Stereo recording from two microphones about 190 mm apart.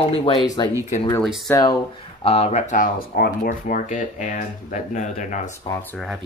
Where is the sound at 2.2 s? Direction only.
35° left (ahead or behind).